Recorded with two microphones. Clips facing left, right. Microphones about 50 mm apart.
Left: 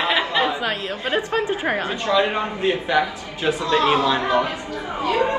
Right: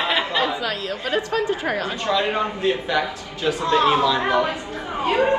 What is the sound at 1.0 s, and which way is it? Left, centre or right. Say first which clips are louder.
A woman's voice: even; left.